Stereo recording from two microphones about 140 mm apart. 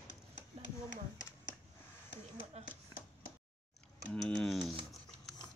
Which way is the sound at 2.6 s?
50° right (ahead or behind).